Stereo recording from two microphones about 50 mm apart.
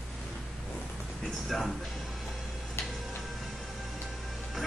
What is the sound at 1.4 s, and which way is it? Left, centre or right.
Music, centre.